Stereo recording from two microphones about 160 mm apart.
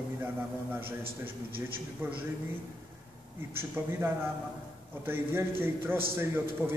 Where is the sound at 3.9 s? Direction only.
15° right (ahead or behind).